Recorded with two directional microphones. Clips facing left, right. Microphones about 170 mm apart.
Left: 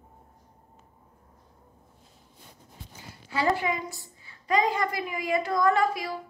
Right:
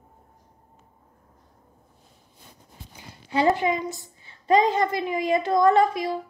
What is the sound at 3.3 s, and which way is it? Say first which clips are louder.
A woman's voice: right 5 dB; 20° right (ahead or behind).